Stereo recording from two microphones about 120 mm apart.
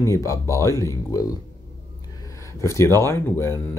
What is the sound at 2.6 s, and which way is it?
Speech, 25° left (ahead or behind).